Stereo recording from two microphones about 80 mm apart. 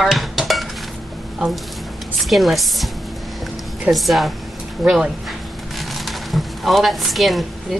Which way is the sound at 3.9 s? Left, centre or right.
Centre.